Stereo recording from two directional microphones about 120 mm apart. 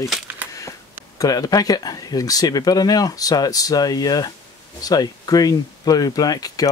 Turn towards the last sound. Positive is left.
turn(degrees=30)  # may be behind; listen again after turning